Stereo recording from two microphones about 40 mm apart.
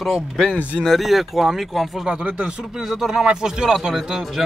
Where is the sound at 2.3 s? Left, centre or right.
Right.